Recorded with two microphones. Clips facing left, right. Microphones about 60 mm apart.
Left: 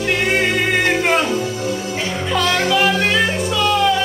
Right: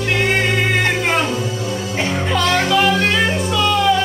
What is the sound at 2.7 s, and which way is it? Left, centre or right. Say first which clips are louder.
Music: even; centre.